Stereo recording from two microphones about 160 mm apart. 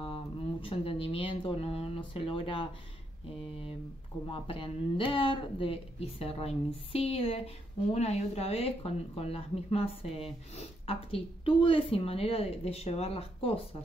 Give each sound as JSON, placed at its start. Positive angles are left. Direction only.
{"t": 0.0, "sound": "speech", "side_deg": 35}
{"t": 4.3, "sound": "speech", "side_deg": 35}